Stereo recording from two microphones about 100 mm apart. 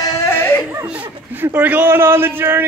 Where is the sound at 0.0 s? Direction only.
35° left (ahead or behind).